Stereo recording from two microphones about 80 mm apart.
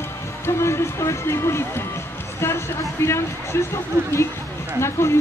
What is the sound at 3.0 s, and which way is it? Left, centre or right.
Speech, left.